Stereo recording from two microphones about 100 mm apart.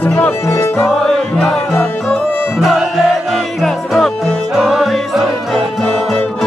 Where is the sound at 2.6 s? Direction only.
Centre (ahead or behind).